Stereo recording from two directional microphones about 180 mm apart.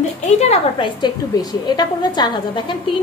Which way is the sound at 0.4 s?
30° left (ahead or behind).